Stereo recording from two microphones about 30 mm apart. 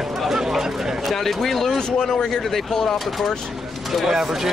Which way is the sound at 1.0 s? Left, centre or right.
Centre.